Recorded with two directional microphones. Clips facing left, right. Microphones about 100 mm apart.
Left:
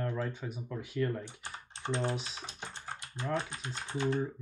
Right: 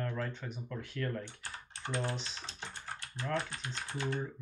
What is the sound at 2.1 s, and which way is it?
Speech, 10° left (ahead or behind).